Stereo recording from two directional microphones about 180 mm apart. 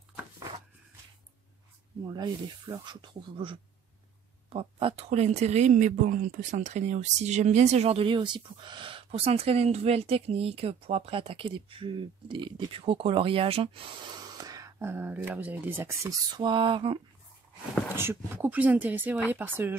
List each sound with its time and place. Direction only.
2.0 s speech: 20° right (ahead or behind)
17.9 s speech: 10° right (ahead or behind)